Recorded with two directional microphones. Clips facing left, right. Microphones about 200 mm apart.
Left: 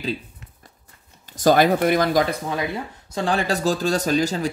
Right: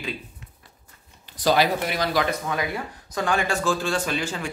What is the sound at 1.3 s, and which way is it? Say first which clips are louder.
Speech: left 5 dB; 50° left (ahead or behind).